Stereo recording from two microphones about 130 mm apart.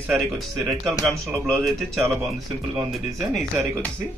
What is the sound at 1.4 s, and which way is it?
Speech, 5° left (ahead or behind).